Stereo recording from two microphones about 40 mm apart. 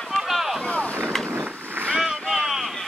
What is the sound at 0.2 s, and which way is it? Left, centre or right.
Boat, centre.